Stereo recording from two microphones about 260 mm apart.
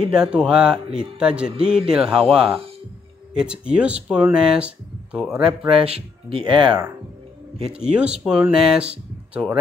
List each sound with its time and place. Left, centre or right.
0.1 s speech: centre
5.8 s speech: right
7.6 s speech: centre